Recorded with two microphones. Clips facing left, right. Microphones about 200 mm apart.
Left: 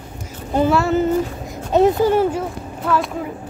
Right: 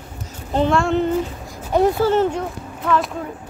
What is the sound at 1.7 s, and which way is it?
Speech, 20° left (ahead or behind).